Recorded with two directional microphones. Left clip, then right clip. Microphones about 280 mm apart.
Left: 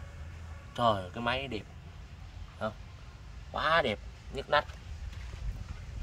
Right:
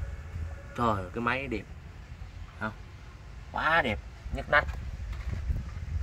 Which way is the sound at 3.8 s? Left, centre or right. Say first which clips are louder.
Right 1 dB; centre.